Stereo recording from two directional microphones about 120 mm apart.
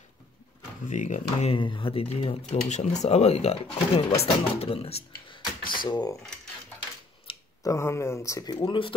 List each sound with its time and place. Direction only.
0.8 s speech: 90° left
1.5 s speech: 45° left (ahead or behind)
2.7 s speech: 70° left (ahead or behind); by 5.4 s 55° left (ahead or behind)
5.4 s a sound: 35° left (ahead or behind)
7.3 s a sound: 50° left (ahead or behind)
7.6 s speech: 25° left (ahead or behind)